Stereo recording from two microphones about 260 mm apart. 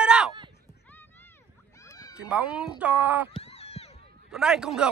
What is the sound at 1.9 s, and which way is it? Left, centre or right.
Cat, centre.